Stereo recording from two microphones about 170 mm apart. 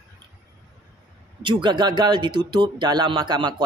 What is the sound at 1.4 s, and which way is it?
Speech, 30° right (ahead or behind).